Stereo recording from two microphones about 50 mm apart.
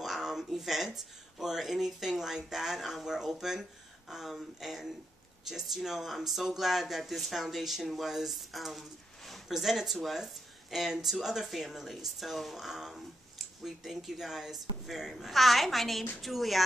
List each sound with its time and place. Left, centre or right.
0.0 s speech: centre